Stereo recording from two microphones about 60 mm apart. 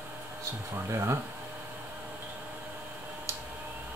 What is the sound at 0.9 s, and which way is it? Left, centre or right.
Speech, right.